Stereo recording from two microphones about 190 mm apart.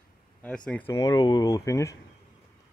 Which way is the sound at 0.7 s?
10° left (ahead or behind).